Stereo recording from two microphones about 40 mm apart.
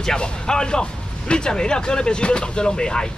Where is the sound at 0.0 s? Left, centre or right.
Centre.